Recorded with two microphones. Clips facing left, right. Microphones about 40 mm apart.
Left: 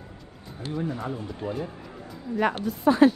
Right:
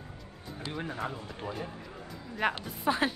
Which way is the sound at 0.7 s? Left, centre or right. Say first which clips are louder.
Left 7 dB; right.